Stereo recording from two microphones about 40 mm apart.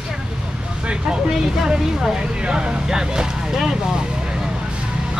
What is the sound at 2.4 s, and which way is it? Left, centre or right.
Speech, right.